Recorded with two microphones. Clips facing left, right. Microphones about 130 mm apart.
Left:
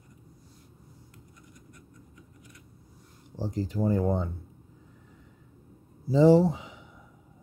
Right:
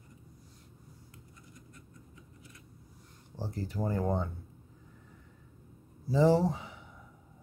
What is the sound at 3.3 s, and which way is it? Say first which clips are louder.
Speech: left 6 dB; 15° left (ahead or behind).